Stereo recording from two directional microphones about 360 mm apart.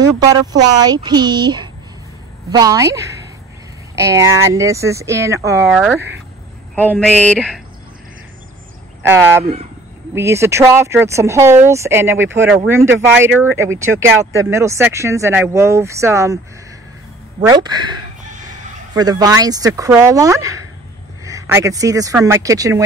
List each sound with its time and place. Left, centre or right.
0.2 s speech: centre
6.7 s a sound: centre
9.0 s speech: centre
9.4 s speech: centre
17.4 s speech: centre